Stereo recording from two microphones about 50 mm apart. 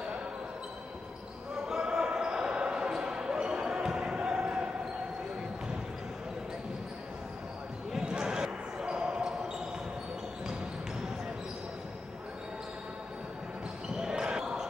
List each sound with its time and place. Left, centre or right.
1.7 s basketball bounce: centre
8.0 s basketball bounce: centre
13.9 s basketball bounce: centre